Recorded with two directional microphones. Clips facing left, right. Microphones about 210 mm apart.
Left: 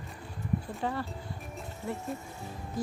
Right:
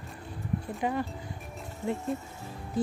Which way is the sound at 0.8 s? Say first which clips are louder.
Right 3 dB; 15° right (ahead or behind).